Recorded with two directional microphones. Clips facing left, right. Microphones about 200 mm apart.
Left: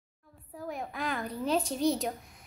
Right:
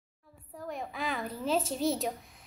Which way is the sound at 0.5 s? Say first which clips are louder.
Left 1 dB; 5° left (ahead or behind).